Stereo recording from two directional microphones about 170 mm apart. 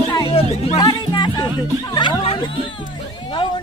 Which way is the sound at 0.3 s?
35° left (ahead or behind).